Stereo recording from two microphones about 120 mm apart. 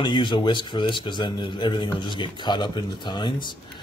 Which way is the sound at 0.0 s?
40° left (ahead or behind).